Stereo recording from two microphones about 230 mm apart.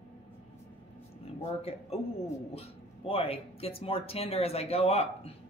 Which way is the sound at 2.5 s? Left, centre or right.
Left.